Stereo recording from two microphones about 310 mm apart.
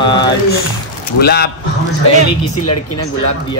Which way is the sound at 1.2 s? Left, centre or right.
Left.